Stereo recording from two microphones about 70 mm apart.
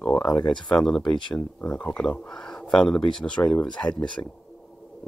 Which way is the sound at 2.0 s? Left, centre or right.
Centre.